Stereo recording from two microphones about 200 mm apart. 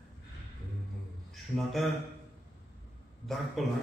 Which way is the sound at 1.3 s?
Centre (ahead or behind).